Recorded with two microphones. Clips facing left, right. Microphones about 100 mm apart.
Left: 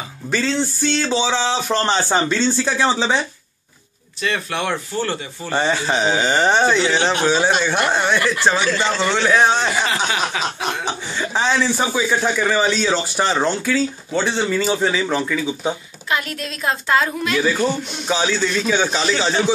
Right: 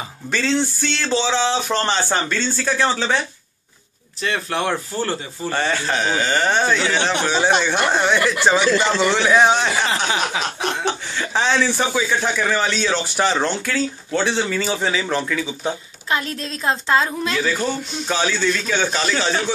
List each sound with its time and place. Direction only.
0.3 s speech: 5° left (ahead or behind)
4.2 s speech: 35° right (ahead or behind)
5.5 s speech: 15° left (ahead or behind)
8.1 s a man's voice: 10° right (ahead or behind)
10.9 s a man's voice: 5° left (ahead or behind)
16.1 s a woman's voice: 30° right (ahead or behind)
17.4 s speech: 10° left (ahead or behind)